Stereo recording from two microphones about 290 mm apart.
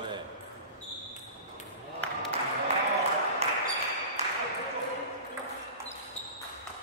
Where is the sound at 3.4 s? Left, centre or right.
Right.